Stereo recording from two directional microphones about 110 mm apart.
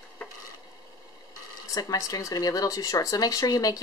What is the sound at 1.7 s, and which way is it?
Speech, 30° left (ahead or behind).